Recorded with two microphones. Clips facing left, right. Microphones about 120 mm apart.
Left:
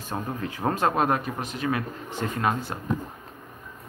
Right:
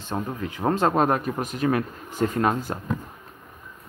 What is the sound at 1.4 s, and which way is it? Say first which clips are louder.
A man's voice: right 4 dB; 45° right (ahead or behind).